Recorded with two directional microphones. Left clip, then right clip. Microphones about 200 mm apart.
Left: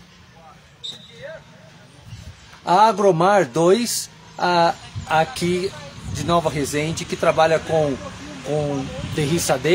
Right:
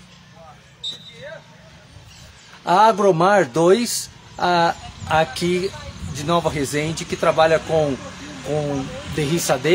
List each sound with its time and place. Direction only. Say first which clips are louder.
2.6 s speech: even; 10° right (ahead or behind)
8.6 s speech: even; 15° right (ahead or behind)
9.1 s speech: even; centre (ahead or behind)